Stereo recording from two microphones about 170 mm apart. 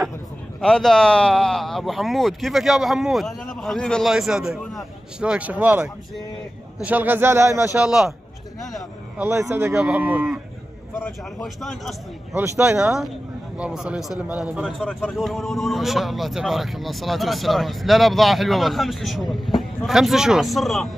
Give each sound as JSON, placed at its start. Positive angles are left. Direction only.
{"t": 0.6, "sound": "a man's voice", "side_deg": 5}
{"t": 7.7, "sound": "a man's voice", "side_deg": -5}
{"t": 9.3, "sound": "speech", "side_deg": -15}
{"t": 11.0, "sound": "speech", "side_deg": 10}
{"t": 11.4, "sound": "a man's voice", "side_deg": 0}
{"t": 12.4, "sound": "a man's voice", "side_deg": -10}